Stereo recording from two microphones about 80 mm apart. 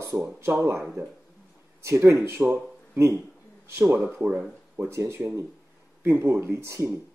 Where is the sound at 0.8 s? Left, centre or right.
Centre.